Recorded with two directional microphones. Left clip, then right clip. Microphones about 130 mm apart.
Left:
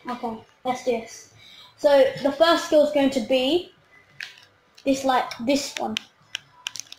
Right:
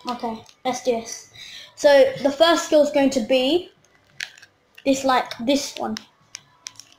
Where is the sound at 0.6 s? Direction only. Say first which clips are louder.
Right 2 dB; 5° right (ahead or behind).